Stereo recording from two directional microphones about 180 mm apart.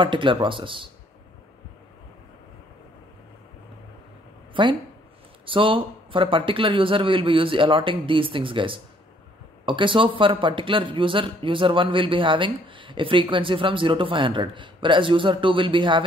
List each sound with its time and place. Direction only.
0.0 s speech: 25° right (ahead or behind)
4.6 s speech: 30° right (ahead or behind)